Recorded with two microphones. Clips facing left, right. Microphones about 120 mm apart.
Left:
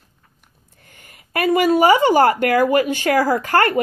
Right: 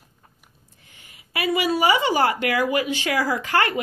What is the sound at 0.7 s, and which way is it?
Speech, 50° left (ahead or behind).